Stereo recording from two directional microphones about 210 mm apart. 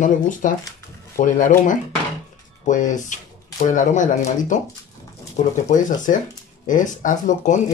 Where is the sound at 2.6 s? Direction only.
35° left (ahead or behind).